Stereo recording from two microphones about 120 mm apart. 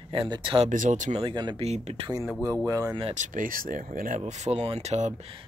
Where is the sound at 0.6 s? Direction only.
90° right.